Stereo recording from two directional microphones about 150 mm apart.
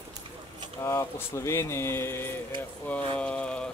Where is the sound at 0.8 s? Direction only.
20° left (ahead or behind).